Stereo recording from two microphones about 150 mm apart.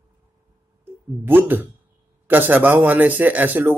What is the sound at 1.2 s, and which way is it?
Speech, 15° right (ahead or behind).